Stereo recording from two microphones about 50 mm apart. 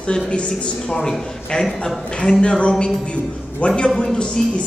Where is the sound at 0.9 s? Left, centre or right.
Centre.